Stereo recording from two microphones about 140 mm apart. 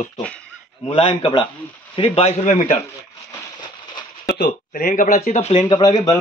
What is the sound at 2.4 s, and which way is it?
Speech, 65° left (ahead or behind).